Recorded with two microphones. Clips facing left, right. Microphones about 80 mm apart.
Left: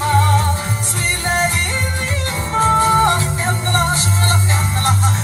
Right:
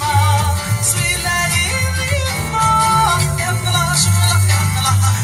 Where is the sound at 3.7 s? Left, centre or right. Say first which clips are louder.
Left 1 dB; right.